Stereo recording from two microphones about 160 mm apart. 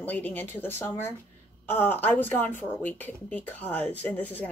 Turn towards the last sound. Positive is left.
turn(degrees=10)  # may be behind; listen again after turning